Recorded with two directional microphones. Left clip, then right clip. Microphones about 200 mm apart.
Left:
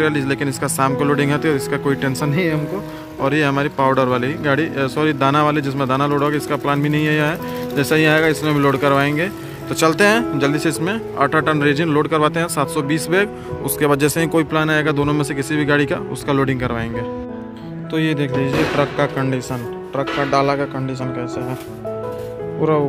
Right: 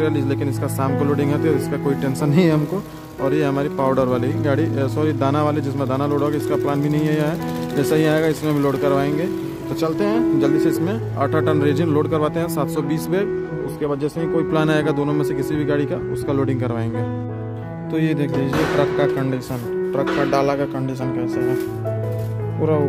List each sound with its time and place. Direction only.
0.0 s speech: centre (ahead or behind)
2.3 s speech: 25° right (ahead or behind)
3.2 s speech: centre (ahead or behind)
9.8 s speech: 10° left (ahead or behind)
13.7 s speech: 15° left (ahead or behind)
14.5 s speech: 10° right (ahead or behind)
17.9 s speech: 5° right (ahead or behind)